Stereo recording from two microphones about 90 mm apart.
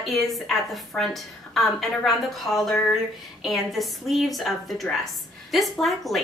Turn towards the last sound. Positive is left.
turn(degrees=0)  # may be behind; listen again after turning